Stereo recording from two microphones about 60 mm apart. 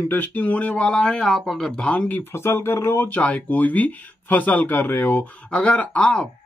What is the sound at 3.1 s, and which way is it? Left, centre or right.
Speech, left.